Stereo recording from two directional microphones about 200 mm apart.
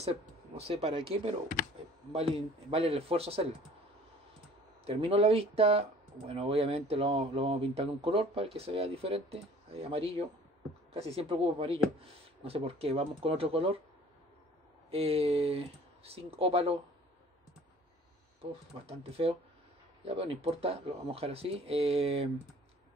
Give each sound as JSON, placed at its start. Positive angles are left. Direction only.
{"t": 0.6, "sound": "speech", "side_deg": -30}
{"t": 4.8, "sound": "speech", "side_deg": -30}
{"t": 14.9, "sound": "speech", "side_deg": -30}
{"t": 18.4, "sound": "speech", "side_deg": -30}